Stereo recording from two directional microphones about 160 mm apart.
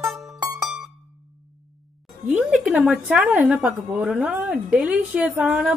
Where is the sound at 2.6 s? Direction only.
5° right (ahead or behind).